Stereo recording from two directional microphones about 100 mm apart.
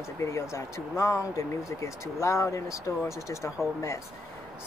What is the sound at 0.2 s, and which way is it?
Speech, 30° left (ahead or behind).